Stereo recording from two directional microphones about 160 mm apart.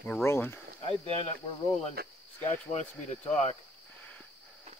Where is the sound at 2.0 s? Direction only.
70° right (ahead or behind).